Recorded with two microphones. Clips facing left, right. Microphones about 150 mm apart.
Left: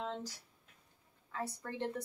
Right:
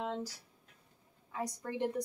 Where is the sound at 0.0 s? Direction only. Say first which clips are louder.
Right 3 dB; 10° right (ahead or behind).